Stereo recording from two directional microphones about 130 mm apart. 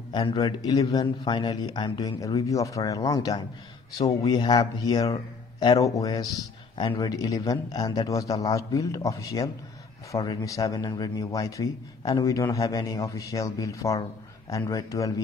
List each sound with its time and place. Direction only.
0.1 s a man's voice: 35° left (ahead or behind)